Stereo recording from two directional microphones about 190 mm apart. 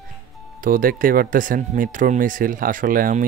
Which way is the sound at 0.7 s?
50° right (ahead or behind).